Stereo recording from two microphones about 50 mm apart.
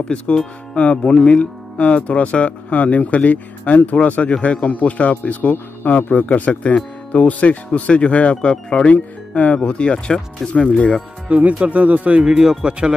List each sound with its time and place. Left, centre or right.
0.1 s speech: centre
0.7 s speech: left
11.2 s speech: right
12.2 s speech: centre